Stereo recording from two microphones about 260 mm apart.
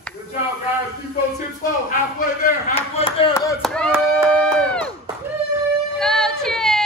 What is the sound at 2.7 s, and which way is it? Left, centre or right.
Speech, left.